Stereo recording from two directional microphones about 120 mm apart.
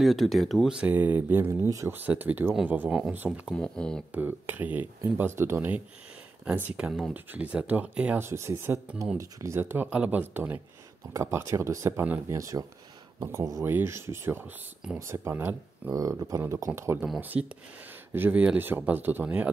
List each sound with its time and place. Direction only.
0.0 s speech: centre (ahead or behind)
3.5 s speech: 10° left (ahead or behind)
4.1 s speech: 15° right (ahead or behind)
8.2 s speech: 25° right (ahead or behind)
15.9 s speech: 30° right (ahead or behind); by 19.5 s 10° right (ahead or behind)